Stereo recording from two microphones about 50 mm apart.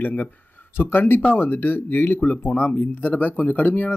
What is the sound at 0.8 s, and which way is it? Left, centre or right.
Speech, left.